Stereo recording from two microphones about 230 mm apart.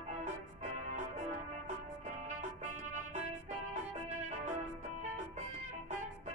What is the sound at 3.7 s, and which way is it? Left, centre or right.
Music, right.